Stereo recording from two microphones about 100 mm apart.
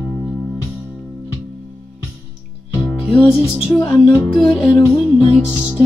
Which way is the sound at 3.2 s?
20° left (ahead or behind).